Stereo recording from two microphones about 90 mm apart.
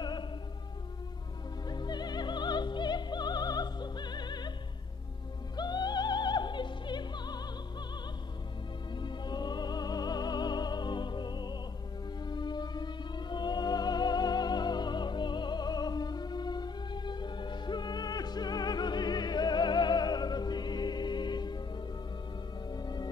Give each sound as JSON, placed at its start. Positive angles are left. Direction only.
{"t": 0.0, "sound": "music", "side_deg": 55}
{"t": 1.7, "sound": "music", "side_deg": 50}
{"t": 5.6, "sound": "music", "side_deg": 50}
{"t": 8.9, "sound": "music", "side_deg": 55}